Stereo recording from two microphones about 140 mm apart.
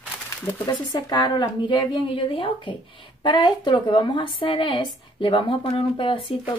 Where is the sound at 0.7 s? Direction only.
30° left (ahead or behind).